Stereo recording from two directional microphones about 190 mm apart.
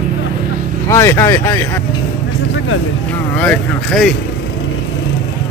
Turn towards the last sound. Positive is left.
turn(degrees=5)  # may be behind; listen again after turning